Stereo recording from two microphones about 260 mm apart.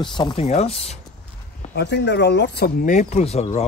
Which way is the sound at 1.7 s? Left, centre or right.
Left.